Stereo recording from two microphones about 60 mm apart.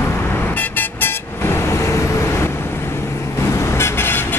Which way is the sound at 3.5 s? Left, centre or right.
Left.